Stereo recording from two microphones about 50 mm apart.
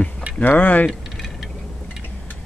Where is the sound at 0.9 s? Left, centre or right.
Centre.